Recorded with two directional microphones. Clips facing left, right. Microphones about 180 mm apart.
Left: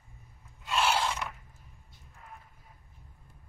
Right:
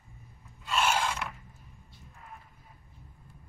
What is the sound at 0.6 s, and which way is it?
Filing, 15° left (ahead or behind).